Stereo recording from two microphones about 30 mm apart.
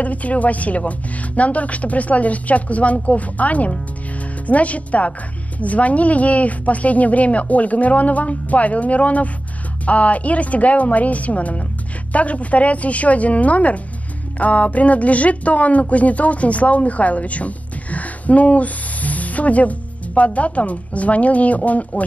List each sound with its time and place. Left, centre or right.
0.0 s speech: left